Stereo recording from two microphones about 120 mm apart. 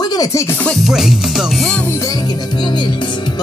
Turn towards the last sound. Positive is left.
turn(degrees=40)  # may be behind; listen again after turning